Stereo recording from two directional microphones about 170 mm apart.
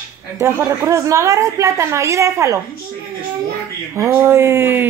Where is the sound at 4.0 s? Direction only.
15° right (ahead or behind).